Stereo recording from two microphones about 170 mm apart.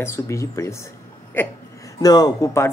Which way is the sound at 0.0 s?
15° left (ahead or behind).